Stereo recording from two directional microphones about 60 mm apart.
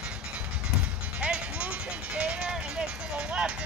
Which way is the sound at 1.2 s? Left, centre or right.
Right.